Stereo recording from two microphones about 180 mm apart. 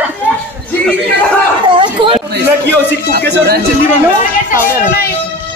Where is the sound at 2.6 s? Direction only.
60° right (ahead or behind).